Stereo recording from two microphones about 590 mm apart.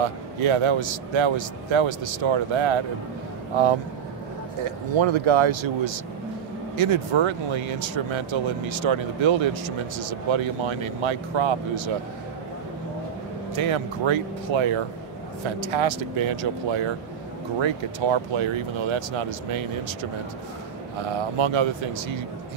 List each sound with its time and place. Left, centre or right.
0.0 s speech: right
4.6 s speech: right
6.8 s speech: right
13.6 s speech: right